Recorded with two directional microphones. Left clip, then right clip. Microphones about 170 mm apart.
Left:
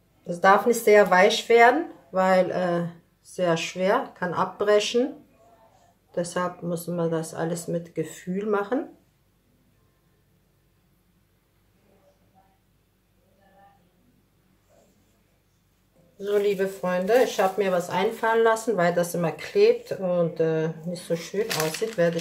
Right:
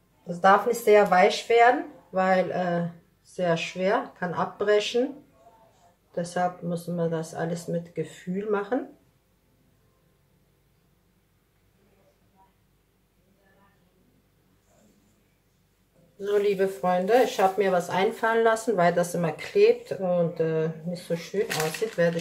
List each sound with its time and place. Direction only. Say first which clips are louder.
0.3 s speech: left 1 dB; 35° left (ahead or behind)
6.1 s speech: even; 20° left (ahead or behind)
16.2 s speech: even; centre (ahead or behind); by 21.8 s 20° left (ahead or behind)